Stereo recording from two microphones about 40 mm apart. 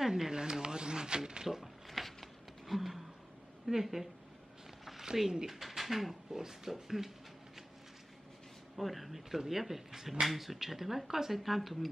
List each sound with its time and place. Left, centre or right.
0.0 s speech: centre
1.6 s a sound: centre
3.6 s a woman's voice: centre
8.7 s speech: centre